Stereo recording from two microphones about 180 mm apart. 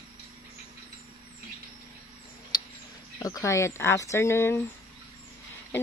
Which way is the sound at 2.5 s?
25° left (ahead or behind).